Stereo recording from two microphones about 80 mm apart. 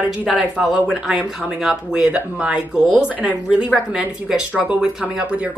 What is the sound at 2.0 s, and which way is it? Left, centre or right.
A woman's voice, centre.